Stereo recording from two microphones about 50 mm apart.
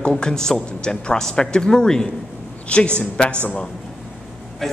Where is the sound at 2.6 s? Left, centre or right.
Left.